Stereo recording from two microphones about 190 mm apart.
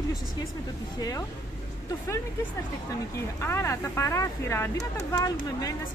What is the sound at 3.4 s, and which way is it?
Speech, 15° left (ahead or behind).